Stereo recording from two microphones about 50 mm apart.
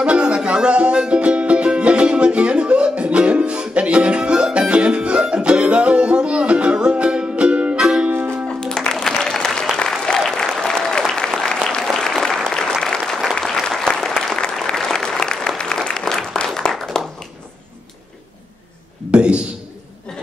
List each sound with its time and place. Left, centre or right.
0.0 s music: right
7.8 s music: centre
8.1 s music: right
8.5 s music: centre
9.0 s applause: centre
16.4 s a sound: centre
19.1 s a sound: right